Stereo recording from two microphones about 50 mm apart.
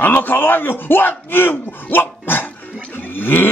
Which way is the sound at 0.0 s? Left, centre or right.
Left.